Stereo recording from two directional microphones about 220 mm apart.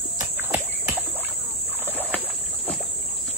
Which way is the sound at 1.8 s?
10° left (ahead or behind).